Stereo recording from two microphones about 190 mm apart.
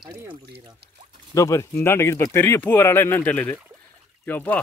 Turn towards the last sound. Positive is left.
turn(degrees=10)  # may be behind; listen again after turning